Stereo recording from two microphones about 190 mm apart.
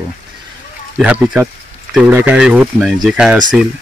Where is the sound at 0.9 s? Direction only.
5° right (ahead or behind).